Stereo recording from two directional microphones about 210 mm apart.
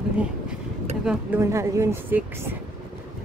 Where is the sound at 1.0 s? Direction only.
10° right (ahead or behind).